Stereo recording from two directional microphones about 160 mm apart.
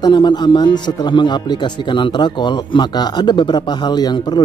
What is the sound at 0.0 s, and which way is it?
Speech, 30° left (ahead or behind).